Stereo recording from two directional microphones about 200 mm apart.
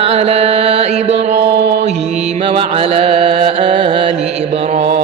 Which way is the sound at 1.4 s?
55° right (ahead or behind).